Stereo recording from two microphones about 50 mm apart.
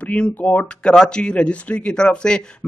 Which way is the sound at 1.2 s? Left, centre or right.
Left.